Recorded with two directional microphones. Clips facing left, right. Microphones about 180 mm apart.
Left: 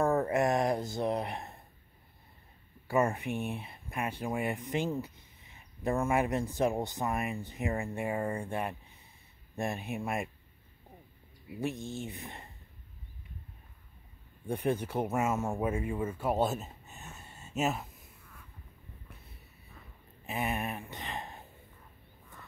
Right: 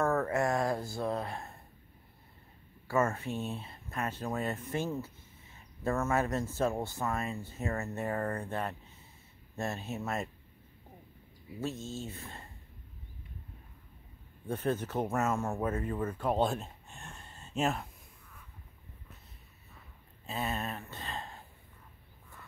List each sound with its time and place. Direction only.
0.0 s a sound: 15° left (ahead or behind)
2.9 s speech: 15° left (ahead or behind)
11.6 s speech: 15° left (ahead or behind)
14.5 s speech: 15° left (ahead or behind)
20.2 s speech: 15° left (ahead or behind)